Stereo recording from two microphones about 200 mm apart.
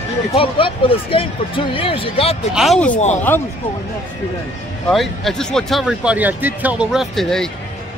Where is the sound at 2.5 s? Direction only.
Centre (ahead or behind).